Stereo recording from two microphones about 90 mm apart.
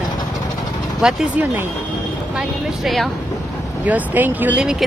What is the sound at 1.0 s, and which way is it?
Speech, 5° right (ahead or behind).